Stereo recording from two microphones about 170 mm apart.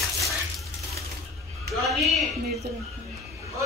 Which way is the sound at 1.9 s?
Centre (ahead or behind).